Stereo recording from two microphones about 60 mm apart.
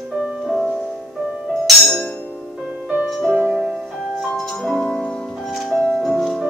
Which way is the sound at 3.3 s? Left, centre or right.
Right.